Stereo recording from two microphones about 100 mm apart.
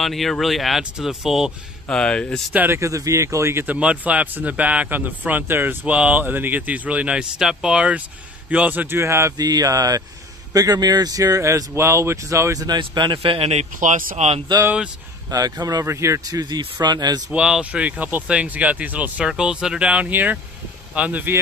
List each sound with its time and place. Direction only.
0.0 s speech: centre (ahead or behind)
1.9 s speech: 10° left (ahead or behind)
2.5 s speech: 20° right (ahead or behind)
2.8 s speech: 30° right (ahead or behind)
3.6 s a man's voice: 10° right (ahead or behind)
9.4 s speech: 40° right (ahead or behind)
12.6 s speech: 50° right (ahead or behind); by 13.7 s 80° right
15.2 s speech: 40° right (ahead or behind)
17.3 s a man's voice: 10° right (ahead or behind)